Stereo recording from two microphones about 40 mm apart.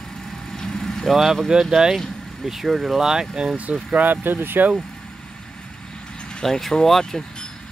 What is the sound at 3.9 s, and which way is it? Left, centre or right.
Speech, right.